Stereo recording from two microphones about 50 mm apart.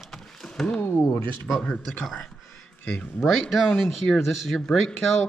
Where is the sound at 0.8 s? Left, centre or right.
Left.